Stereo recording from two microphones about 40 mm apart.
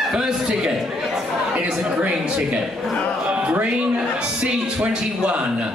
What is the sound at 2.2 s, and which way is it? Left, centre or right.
Speech, right.